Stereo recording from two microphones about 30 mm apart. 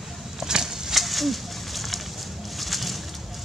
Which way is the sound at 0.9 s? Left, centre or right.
Centre.